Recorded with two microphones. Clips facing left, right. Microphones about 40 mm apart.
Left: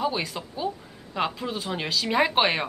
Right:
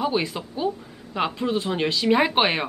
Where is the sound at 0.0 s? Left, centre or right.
Centre.